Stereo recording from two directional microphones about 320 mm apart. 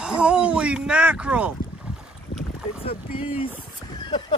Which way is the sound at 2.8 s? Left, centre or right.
Centre.